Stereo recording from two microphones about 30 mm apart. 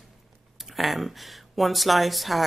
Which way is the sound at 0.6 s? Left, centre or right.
Centre.